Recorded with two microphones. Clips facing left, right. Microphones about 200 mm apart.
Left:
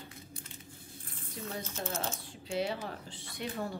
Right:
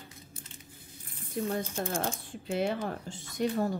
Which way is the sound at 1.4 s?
55° right (ahead or behind).